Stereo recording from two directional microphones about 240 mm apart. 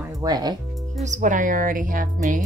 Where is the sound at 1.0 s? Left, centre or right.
Right.